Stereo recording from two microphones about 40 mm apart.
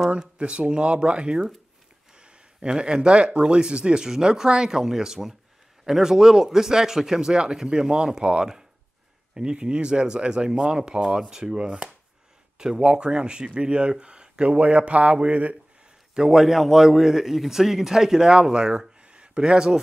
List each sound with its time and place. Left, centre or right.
0.2 s a man's voice: right
16.2 s a man's voice: centre